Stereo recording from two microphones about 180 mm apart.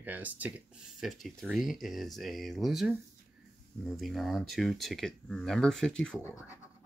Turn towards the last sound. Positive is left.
turn(degrees=15)  # may be behind; listen again after turning